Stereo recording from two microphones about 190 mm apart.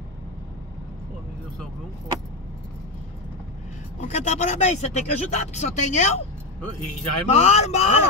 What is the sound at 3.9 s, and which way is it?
Music, 35° left (ahead or behind).